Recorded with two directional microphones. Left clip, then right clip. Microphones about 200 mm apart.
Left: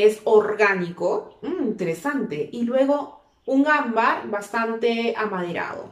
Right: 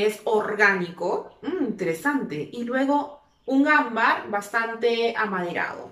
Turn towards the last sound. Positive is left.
turn(degrees=5)  # may be behind; listen again after turning